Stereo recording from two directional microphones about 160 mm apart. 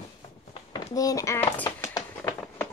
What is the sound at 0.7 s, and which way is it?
Speech, 20° left (ahead or behind).